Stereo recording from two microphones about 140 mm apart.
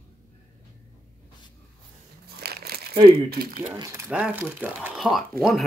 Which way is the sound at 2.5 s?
90° right.